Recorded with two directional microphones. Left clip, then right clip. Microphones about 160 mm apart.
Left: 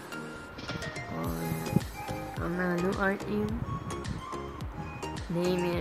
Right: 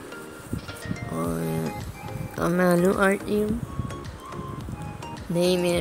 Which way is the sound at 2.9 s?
35° right (ahead or behind).